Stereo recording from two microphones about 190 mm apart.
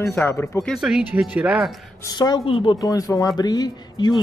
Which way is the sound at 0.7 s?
5° right (ahead or behind).